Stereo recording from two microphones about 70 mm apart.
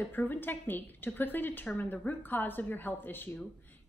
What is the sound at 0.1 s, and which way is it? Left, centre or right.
A woman's voice, left.